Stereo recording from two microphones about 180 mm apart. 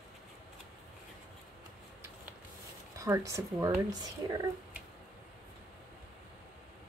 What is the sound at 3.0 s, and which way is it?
Speech, 15° right (ahead or behind).